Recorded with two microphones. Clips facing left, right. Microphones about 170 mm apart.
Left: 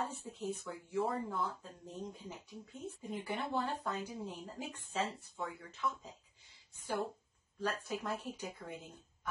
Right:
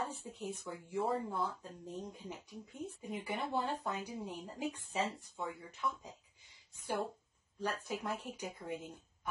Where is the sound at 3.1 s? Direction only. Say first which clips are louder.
Even; 15° right (ahead or behind).